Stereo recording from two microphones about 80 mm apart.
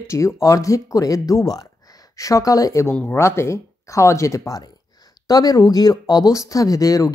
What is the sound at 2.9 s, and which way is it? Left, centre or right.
Speech, left.